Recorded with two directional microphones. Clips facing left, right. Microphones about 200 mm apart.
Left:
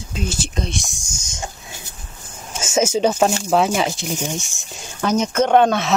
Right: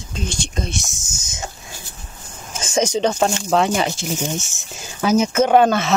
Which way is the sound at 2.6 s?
5° left (ahead or behind).